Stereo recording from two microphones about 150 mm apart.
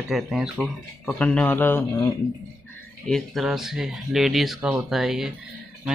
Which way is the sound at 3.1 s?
Centre (ahead or behind).